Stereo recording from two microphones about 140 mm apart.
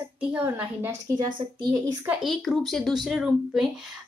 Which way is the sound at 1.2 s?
30° right (ahead or behind).